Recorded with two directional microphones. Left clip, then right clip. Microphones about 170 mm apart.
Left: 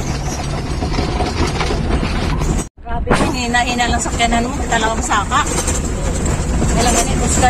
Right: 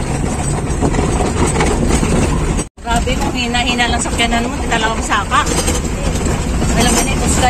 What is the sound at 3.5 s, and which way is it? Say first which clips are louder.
Speech: right 1 dB; 15° left (ahead or behind).